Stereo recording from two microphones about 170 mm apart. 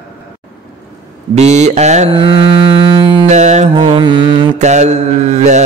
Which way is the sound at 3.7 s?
30° right (ahead or behind).